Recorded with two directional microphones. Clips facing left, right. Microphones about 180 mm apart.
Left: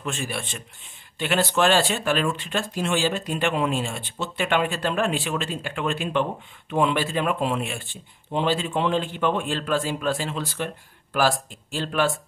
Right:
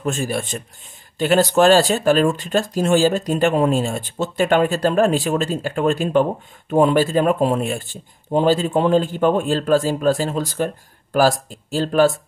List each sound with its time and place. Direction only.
0.0 s speech: 40° right (ahead or behind)